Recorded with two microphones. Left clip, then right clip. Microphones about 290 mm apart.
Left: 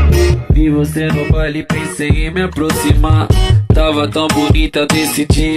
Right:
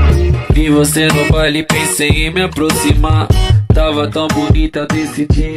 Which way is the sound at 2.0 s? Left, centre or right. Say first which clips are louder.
Right 1 dB; centre.